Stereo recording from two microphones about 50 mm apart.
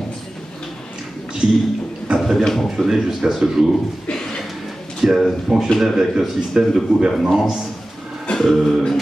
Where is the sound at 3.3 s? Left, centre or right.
Centre.